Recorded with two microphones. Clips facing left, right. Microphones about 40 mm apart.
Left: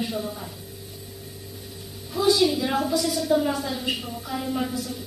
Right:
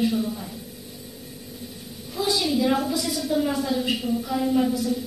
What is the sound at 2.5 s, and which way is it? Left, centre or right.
A woman's voice, centre.